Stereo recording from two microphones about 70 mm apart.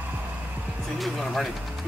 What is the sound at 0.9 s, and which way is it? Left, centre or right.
Music, centre.